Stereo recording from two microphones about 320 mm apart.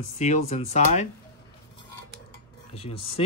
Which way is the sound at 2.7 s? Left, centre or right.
Centre.